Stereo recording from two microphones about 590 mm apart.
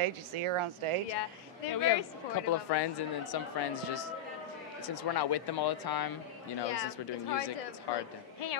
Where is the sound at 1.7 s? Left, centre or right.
Left.